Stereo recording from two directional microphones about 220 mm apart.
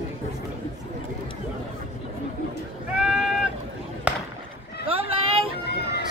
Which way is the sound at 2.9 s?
5° right (ahead or behind).